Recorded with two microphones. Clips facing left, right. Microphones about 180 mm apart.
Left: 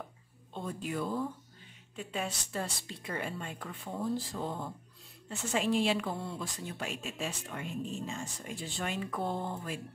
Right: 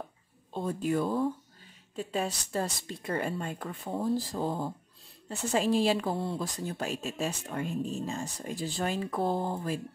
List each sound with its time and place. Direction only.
0.5 s speech: 40° right (ahead or behind)